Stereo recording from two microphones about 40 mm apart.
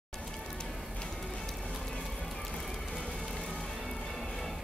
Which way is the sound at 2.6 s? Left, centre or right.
Centre.